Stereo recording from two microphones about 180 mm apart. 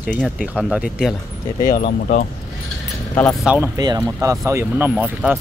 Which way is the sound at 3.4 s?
5° right (ahead or behind).